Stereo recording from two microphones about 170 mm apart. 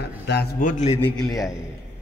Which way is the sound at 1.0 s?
20° left (ahead or behind).